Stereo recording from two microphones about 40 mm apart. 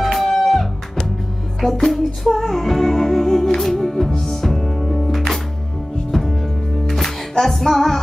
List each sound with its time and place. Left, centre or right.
0.0 s music: centre